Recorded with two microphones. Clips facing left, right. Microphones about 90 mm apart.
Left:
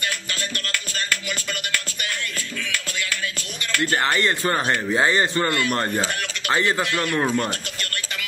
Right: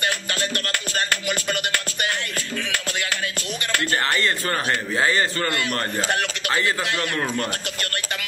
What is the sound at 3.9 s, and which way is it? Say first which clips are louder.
A man's voice: left 2 dB; 20° left (ahead or behind).